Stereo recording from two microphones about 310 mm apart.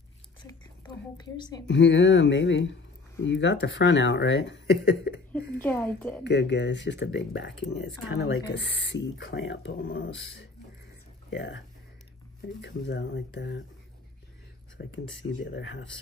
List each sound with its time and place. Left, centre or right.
0.4 s whispering: centre
1.7 s speech: left
5.6 s a woman's voice: centre
6.2 s speech: left
14.8 s speech: left